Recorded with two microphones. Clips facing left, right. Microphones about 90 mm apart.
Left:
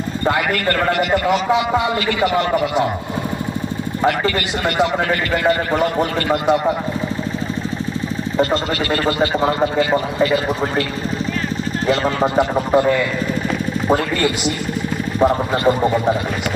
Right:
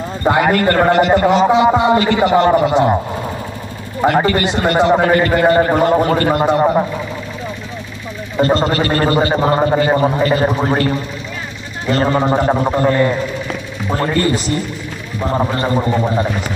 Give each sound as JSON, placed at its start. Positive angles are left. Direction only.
{"t": 0.2, "sound": "a man's voice", "side_deg": -25}
{"t": 4.1, "sound": "speech", "side_deg": -30}
{"t": 8.4, "sound": "speech", "side_deg": -35}
{"t": 13.9, "sound": "speech", "side_deg": -35}